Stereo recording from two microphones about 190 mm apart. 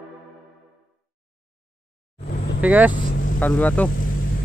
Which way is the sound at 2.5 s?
10° right (ahead or behind).